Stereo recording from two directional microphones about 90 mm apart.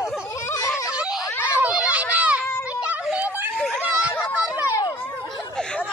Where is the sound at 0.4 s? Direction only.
35° left (ahead or behind).